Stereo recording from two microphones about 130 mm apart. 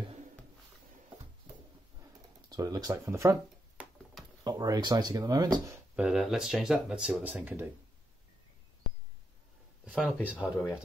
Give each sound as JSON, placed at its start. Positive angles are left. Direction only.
{"t": 2.5, "sound": "speech", "side_deg": -30}
{"t": 3.8, "sound": "a sound", "side_deg": -10}
{"t": 4.5, "sound": "speech", "side_deg": -30}
{"t": 5.9, "sound": "speech", "side_deg": -5}
{"t": 9.8, "sound": "speech", "side_deg": 0}